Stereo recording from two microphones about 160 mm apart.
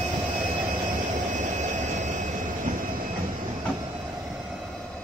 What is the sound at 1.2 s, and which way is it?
Train, 50° right (ahead or behind).